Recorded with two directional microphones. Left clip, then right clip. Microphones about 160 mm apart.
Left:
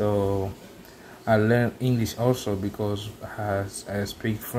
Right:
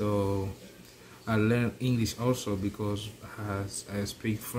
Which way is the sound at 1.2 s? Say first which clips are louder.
Left 7 dB; 15° right (ahead or behind).